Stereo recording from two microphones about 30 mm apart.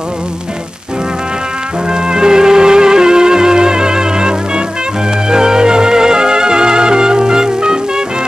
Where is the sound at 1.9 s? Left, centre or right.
Right.